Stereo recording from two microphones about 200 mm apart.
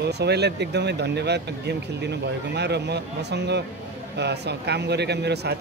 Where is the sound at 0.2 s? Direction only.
55° right (ahead or behind).